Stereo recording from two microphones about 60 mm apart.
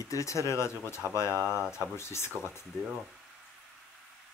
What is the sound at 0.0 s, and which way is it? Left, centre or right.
Speech, left.